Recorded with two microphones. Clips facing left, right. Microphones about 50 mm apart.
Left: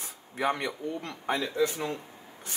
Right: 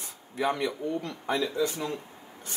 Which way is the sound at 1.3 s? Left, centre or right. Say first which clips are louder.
Even; left.